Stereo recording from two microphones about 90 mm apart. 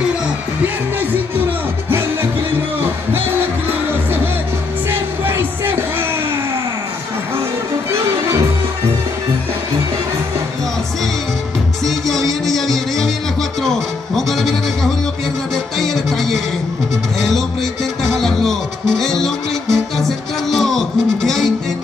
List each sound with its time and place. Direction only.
4.8 s music: 25° right (ahead or behind)
11.8 s music: 5° left (ahead or behind)
18.0 s music: 5° left (ahead or behind)